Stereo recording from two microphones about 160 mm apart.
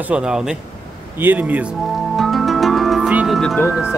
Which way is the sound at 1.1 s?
10° right (ahead or behind).